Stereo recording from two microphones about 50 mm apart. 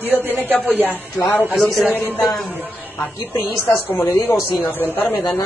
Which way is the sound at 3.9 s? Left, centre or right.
Left.